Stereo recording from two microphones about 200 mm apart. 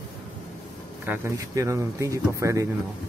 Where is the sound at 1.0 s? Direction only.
10° right (ahead or behind).